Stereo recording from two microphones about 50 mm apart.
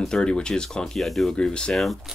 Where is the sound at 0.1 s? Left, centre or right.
Centre.